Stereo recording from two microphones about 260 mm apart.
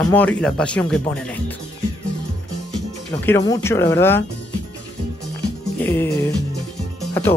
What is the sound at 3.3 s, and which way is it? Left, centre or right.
Speech, centre.